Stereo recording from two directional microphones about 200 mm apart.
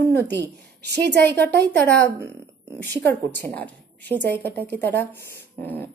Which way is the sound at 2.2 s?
15° right (ahead or behind).